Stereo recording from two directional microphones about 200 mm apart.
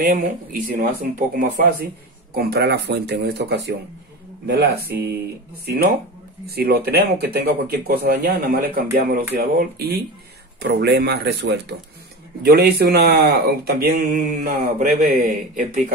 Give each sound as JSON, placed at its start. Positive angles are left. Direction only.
{"t": 0.0, "sound": "speech", "side_deg": -45}
{"t": 6.4, "sound": "speech", "side_deg": -50}